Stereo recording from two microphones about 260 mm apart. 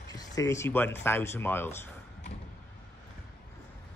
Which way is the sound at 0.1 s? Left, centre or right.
Centre.